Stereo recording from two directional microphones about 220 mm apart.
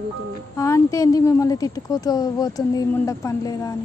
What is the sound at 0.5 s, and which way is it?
A woman's voice, 15° left (ahead or behind).